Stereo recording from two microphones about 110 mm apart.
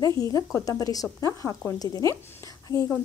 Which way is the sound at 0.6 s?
35° left (ahead or behind).